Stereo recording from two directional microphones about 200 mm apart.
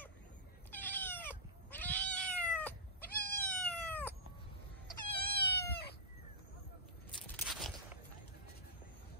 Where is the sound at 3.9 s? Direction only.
10° left (ahead or behind).